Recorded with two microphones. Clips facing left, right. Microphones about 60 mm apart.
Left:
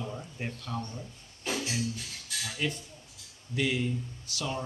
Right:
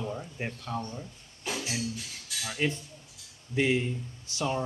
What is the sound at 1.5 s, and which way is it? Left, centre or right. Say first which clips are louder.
Music: left 1 dB; centre.